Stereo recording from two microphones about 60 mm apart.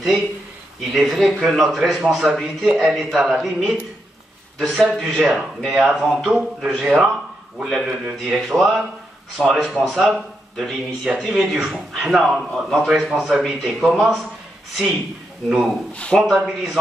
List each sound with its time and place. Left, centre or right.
0.7 s speech: centre
15.4 s speech: centre
15.9 s speech: centre
16.2 s speech: centre